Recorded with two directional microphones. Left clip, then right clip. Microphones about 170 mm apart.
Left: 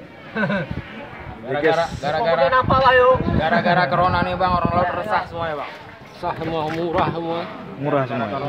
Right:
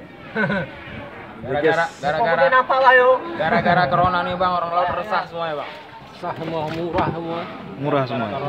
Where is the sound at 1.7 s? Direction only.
25° left (ahead or behind).